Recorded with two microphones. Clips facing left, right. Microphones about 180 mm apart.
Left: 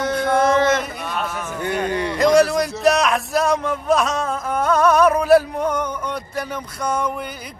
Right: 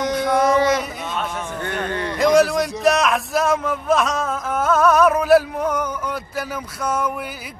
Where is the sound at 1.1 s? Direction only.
10° left (ahead or behind).